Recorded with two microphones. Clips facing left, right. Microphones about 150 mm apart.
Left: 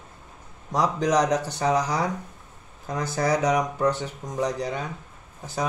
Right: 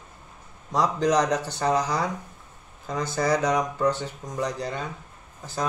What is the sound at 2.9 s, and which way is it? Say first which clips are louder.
Speech: even; 5° left (ahead or behind).